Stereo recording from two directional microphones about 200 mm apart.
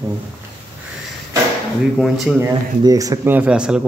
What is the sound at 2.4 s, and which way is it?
A man's voice, 15° right (ahead or behind).